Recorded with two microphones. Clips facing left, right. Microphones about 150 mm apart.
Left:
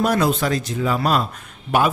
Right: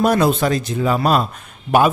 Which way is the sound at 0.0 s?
25° right (ahead or behind).